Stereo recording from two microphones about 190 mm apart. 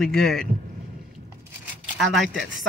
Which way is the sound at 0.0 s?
Centre (ahead or behind).